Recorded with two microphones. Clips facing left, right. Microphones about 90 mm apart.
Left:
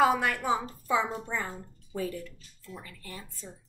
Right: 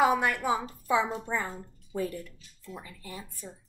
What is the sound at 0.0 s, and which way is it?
A woman's voice, 15° right (ahead or behind).